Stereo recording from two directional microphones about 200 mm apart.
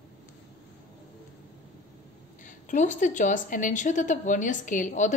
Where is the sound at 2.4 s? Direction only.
40° left (ahead or behind).